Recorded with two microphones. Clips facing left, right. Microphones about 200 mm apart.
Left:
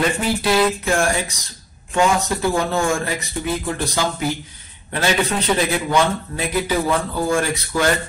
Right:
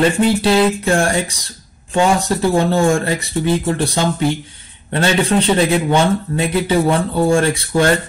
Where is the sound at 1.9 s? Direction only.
30° right (ahead or behind).